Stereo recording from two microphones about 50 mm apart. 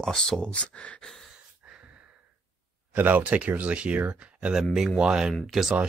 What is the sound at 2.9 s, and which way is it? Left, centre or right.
Speech, right.